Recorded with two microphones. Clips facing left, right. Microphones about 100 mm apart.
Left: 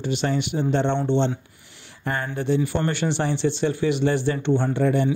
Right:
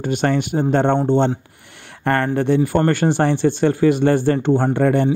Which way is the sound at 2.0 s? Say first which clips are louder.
Right 7 dB; 60° right (ahead or behind).